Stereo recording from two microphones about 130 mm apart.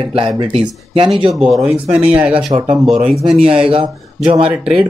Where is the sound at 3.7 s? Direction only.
45° right (ahead or behind).